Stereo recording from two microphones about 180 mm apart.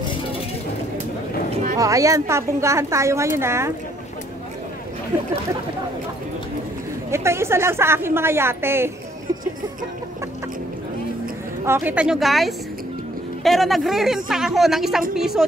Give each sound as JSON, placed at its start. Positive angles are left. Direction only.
{"t": 1.8, "sound": "a woman's voice", "side_deg": -20}
{"t": 7.1, "sound": "a woman's voice", "side_deg": -15}
{"t": 11.6, "sound": "a woman's voice", "side_deg": -10}